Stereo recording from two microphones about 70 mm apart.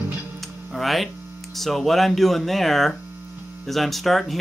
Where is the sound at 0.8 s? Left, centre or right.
Centre.